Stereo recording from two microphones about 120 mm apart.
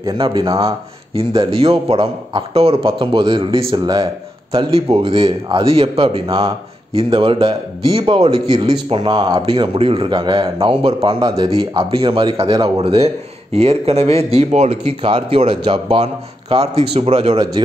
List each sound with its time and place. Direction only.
0.0 s a man's voice: 45° right (ahead or behind)
9.5 s a man's voice: 55° right (ahead or behind)
14.9 s a man's voice: 50° right (ahead or behind)